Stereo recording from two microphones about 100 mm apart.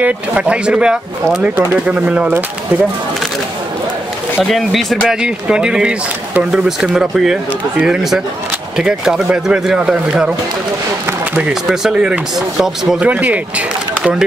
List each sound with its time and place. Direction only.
0.0 s speech: 15° right (ahead or behind)
4.5 s speech: centre (ahead or behind)
11.3 s speech: 5° right (ahead or behind)
13.0 s speech: 15° right (ahead or behind)